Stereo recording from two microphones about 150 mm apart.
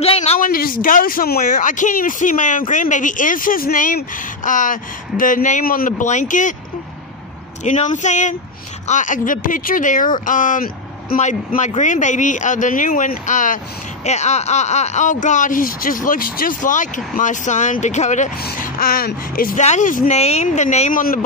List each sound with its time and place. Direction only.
0.0 s a sound: 45° left (ahead or behind)
0.4 s speech: 75° left (ahead or behind); by 6.5 s 60° left (ahead or behind)
7.6 s speech: 55° left (ahead or behind)
11.1 s speech: 50° left (ahead or behind)
14.0 s speech: 50° left (ahead or behind)
18.4 s speech: 75° left (ahead or behind)
19.6 s speech: 55° left (ahead or behind)